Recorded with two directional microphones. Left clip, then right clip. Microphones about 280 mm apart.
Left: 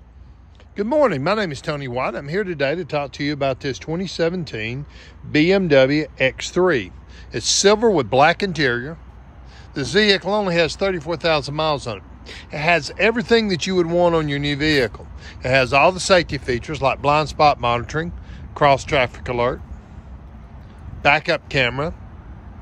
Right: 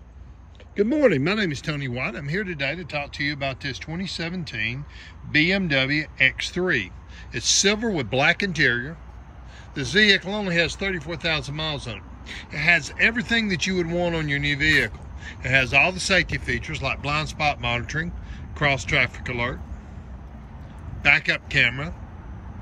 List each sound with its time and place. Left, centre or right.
0.7 s speech: centre
21.0 s speech: centre